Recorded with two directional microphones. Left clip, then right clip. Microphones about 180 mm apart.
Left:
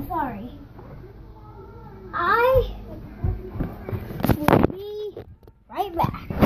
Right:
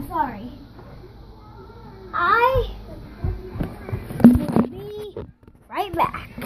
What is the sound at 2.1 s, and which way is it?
Speech, 10° right (ahead or behind).